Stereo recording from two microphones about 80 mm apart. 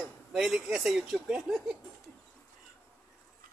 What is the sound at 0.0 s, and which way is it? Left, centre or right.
Speech, centre.